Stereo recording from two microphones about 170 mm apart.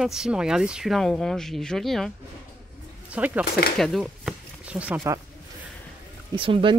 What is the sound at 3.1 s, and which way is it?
Speech, 10° right (ahead or behind).